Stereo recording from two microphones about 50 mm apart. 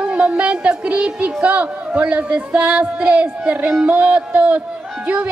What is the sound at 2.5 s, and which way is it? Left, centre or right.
Music, right.